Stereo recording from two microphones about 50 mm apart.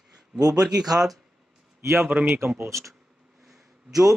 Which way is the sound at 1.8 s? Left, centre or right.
Right.